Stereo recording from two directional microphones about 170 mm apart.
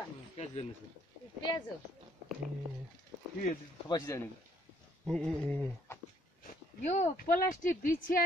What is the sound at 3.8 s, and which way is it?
Speech, 20° left (ahead or behind).